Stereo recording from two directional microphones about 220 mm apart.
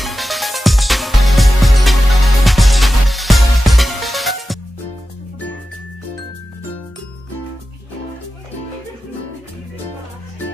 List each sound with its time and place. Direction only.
0.0 s music: centre (ahead or behind)